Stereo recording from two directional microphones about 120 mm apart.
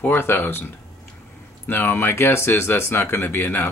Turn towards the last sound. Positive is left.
turn(degrees=20)  # may be behind; listen again after turning